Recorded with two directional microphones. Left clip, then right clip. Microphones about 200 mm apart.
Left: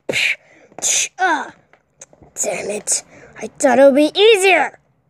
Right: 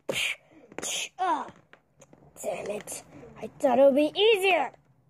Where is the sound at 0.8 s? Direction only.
10° left (ahead or behind).